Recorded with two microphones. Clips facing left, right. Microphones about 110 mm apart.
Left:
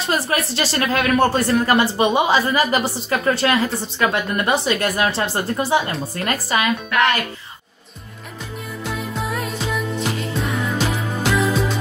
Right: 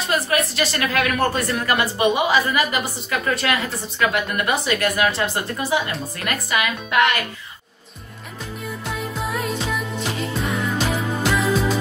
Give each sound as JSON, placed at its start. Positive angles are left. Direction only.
{"t": 0.0, "sound": "speech", "side_deg": 30}
{"t": 9.0, "sound": "music", "side_deg": 0}